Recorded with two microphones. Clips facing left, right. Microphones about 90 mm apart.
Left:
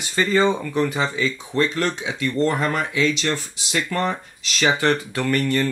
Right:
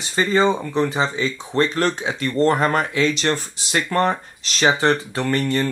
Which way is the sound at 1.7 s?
45° right (ahead or behind).